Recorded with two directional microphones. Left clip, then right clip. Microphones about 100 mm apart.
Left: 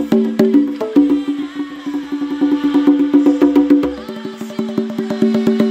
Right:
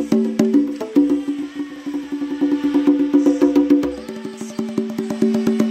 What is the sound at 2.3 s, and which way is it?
Music, 25° left (ahead or behind).